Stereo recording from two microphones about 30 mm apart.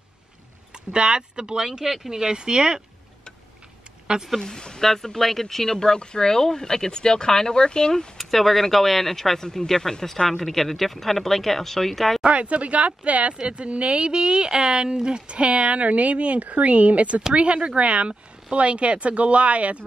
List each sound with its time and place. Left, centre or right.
0.9 s speech: right
1.8 s speech: centre
4.4 s speech: left
4.8 s speech: centre
5.8 s speech: left
8.2 s speech: centre
12.3 s speech: right
13.3 s speech: right
13.7 s speech: right
17.6 s speech: right